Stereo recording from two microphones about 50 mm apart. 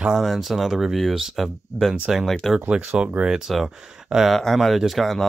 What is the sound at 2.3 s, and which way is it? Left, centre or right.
Speech, centre.